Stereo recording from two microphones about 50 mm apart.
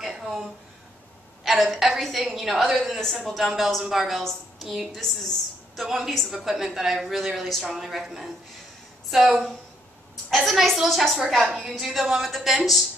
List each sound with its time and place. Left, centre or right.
0.0 s a sound: centre
1.4 s a woman's voice: centre
4.2 s a woman's voice: centre
5.9 s a woman's voice: centre
9.1 s a woman's voice: centre